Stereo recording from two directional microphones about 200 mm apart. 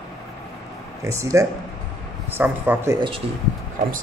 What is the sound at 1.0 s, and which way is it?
Speech, 15° right (ahead or behind).